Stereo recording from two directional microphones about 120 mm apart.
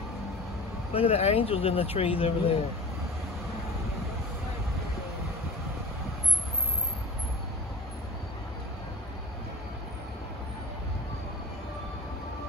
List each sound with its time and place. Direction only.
0.9 s speech: 55° left (ahead or behind)